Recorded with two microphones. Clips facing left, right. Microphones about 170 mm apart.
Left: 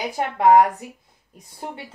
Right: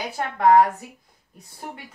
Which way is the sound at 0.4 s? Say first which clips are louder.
Left 1 dB; 15° left (ahead or behind).